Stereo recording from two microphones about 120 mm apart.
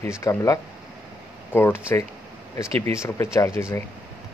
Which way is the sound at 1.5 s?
20° left (ahead or behind).